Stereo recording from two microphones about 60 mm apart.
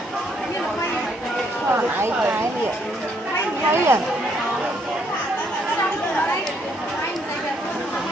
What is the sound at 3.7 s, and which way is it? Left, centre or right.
Speech, right.